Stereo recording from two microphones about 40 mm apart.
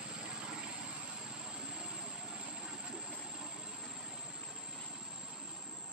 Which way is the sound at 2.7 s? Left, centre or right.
Right.